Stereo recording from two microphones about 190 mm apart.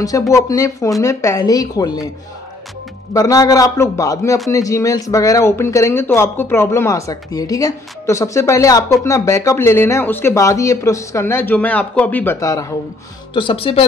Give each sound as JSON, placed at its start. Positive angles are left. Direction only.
{"t": 0.3, "sound": "speech", "side_deg": 15}
{"t": 3.1, "sound": "speech", "side_deg": 20}